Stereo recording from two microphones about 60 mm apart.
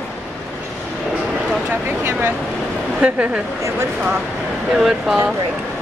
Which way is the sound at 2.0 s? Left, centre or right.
Right.